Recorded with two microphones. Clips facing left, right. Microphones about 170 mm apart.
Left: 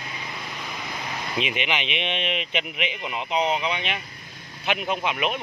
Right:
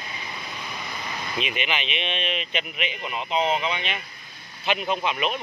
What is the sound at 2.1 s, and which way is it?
Speech, 15° left (ahead or behind).